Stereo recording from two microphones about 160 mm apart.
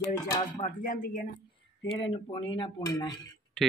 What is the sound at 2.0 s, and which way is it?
Speech, 30° left (ahead or behind).